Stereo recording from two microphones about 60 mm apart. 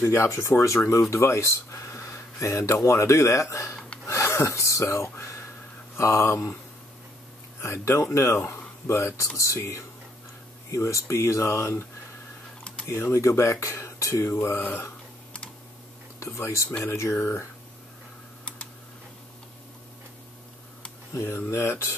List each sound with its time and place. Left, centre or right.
0.0 s speech: left
7.6 s speech: left
12.8 s speech: left
14.6 s speech: left
16.3 s speech: left
21.1 s speech: left